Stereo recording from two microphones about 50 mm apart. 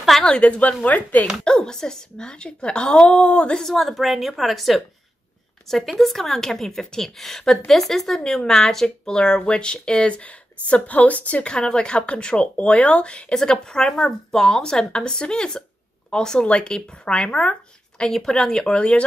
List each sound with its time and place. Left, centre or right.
0.2 s a woman's voice: left
1.4 s a woman's voice: centre
3.6 s a woman's voice: centre; by 18.0 s left
18.0 s a woman's voice: centre